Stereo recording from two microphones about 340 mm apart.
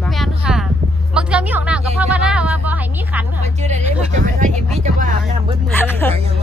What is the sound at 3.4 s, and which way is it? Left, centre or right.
Speech, centre.